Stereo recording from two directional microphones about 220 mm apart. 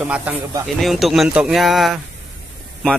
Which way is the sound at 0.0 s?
5° right (ahead or behind).